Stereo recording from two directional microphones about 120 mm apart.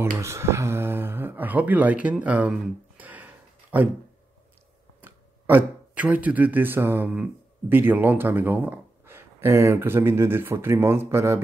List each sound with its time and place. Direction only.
0.0 s speech: 25° right (ahead or behind)
3.0 s a sound: 15° right (ahead or behind)
5.0 s speech: 15° right (ahead or behind)